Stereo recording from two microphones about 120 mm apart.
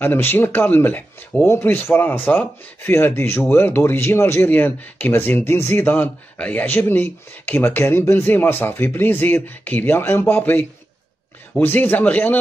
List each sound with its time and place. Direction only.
0.0 s speech: 15° left (ahead or behind)